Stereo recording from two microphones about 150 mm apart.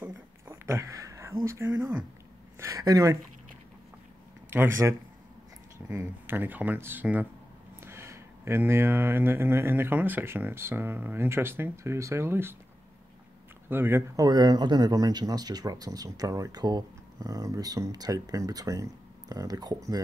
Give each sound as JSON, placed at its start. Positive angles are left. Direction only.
{"t": 0.0, "sound": "a sound", "side_deg": -20}
{"t": 1.4, "sound": "speech", "side_deg": -20}
{"t": 4.5, "sound": "speech", "side_deg": -15}
{"t": 13.7, "sound": "speech", "side_deg": -15}